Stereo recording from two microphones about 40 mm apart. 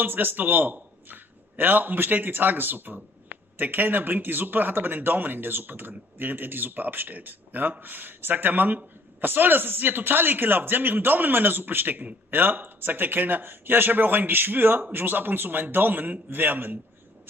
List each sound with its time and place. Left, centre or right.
0.0 s a man's voice: right